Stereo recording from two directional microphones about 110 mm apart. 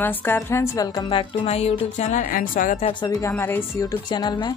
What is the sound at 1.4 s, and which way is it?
Speech, 70° left (ahead or behind).